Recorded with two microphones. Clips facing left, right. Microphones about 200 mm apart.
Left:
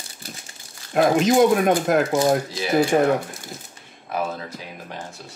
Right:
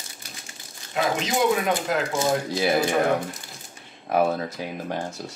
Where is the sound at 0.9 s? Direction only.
50° left (ahead or behind).